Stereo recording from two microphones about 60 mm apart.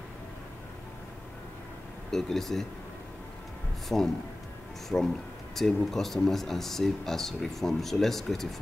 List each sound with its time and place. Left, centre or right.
2.0 s speech: centre
3.9 s speech: left
4.8 s speech: centre